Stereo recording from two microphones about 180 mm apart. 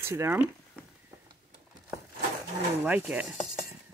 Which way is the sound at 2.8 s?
10° right (ahead or behind).